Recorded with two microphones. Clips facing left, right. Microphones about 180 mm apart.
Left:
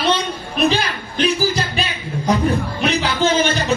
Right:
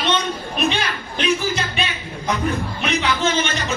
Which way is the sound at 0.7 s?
35° left (ahead or behind).